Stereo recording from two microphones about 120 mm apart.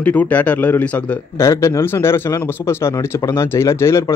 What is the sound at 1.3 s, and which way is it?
Speech, 25° left (ahead or behind).